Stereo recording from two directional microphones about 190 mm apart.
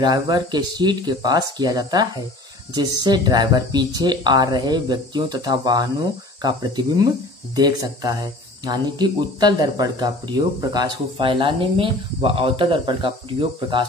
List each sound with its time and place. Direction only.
0.0 s speech: 20° right (ahead or behind)